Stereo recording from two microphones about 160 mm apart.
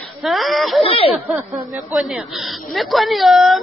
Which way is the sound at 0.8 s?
35° left (ahead or behind).